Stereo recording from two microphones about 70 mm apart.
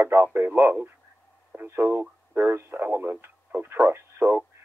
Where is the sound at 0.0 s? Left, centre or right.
Right.